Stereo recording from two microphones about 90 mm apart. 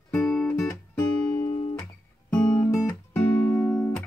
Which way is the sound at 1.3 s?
50° left (ahead or behind).